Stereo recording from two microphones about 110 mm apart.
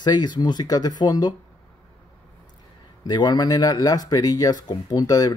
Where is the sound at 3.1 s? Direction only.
40° left (ahead or behind).